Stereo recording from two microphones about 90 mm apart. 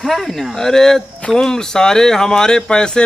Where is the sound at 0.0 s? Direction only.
Centre (ahead or behind).